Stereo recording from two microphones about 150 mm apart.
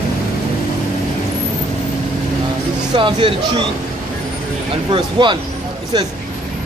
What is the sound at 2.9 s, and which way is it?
Speech, 35° right (ahead or behind).